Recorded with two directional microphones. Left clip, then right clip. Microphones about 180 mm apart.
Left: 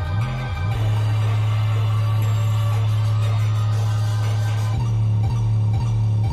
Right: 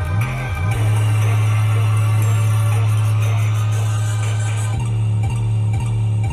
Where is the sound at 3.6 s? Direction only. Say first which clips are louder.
Right 3 dB; 20° right (ahead or behind).